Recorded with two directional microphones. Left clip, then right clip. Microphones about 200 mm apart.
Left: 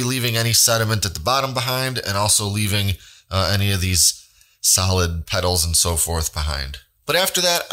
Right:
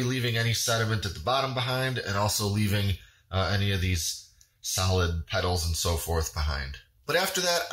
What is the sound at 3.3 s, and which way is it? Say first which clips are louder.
Speech: left 7 dB; 55° left (ahead or behind).